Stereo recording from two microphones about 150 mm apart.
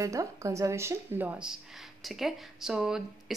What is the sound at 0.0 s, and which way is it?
Speech, 20° right (ahead or behind).